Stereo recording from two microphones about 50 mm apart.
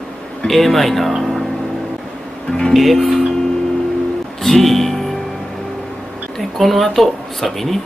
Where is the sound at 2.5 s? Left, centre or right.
Centre.